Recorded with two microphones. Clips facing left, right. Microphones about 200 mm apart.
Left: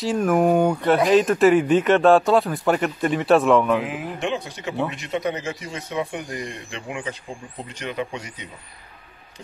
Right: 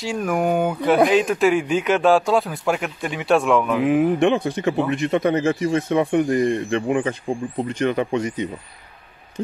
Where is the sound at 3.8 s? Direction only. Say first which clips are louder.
Right 11 dB; 55° right (ahead or behind).